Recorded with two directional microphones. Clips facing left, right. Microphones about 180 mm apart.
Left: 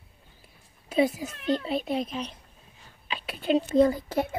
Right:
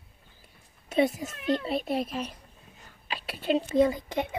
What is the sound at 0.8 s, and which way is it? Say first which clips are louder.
A child's voice: left 1 dB; centre (ahead or behind).